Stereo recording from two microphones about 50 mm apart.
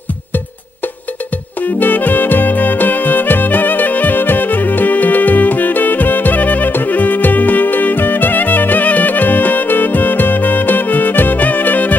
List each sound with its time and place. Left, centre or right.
1.6 s music: left